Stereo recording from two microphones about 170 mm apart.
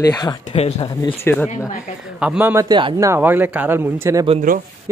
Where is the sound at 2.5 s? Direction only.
20° right (ahead or behind).